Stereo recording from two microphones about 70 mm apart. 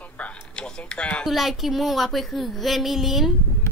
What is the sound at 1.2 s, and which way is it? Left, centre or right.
A woman's voice, centre.